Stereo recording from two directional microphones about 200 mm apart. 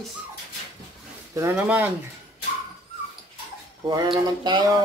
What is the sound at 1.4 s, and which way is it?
Speech, 10° right (ahead or behind).